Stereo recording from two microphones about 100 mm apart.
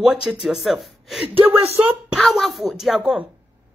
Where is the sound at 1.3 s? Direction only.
75° right (ahead or behind).